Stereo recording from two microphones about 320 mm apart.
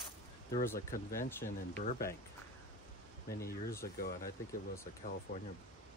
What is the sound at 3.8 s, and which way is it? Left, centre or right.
Speech, left.